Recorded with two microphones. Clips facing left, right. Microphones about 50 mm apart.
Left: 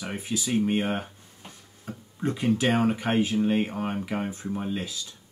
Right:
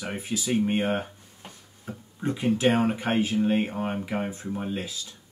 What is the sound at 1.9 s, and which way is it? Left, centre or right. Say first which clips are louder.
Speech: even; centre.